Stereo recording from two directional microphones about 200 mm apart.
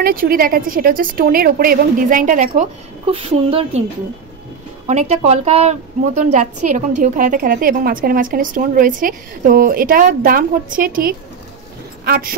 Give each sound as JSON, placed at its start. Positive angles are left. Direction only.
{"t": 0.0, "sound": "a woman's voice", "side_deg": -45}
{"t": 4.8, "sound": "a woman's voice", "side_deg": -35}